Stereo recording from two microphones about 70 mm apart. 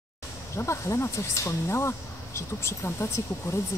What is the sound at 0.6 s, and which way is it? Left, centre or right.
Speech, left.